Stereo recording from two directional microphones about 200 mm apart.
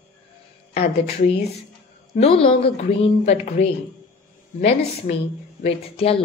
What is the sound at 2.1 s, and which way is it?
A woman's voice, 30° left (ahead or behind).